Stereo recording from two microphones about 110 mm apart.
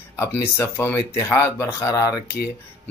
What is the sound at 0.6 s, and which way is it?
Speech, 20° left (ahead or behind).